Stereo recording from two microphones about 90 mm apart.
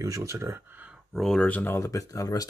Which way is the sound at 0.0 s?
35° right (ahead or behind).